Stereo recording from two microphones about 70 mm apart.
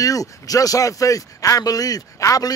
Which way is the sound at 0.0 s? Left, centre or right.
Left.